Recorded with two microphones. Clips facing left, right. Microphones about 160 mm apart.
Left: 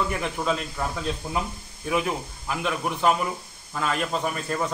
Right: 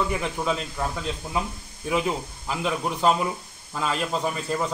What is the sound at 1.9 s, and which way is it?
A man's voice, 15° right (ahead or behind).